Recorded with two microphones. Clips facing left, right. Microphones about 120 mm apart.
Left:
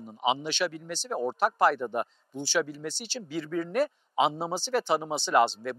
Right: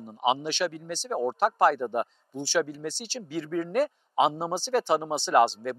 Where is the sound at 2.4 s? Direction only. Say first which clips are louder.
Right 2 dB; 65° right (ahead or behind).